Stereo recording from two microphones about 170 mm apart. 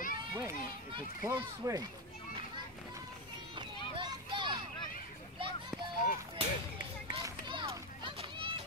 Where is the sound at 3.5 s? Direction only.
25° right (ahead or behind).